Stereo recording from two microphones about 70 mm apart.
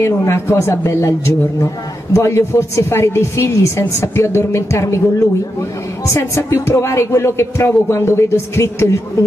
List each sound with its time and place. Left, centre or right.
0.0 s speech: left
6.0 s speech: left